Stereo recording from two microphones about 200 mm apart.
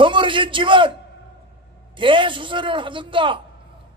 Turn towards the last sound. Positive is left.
turn(degrees=-25)  # may be behind; listen again after turning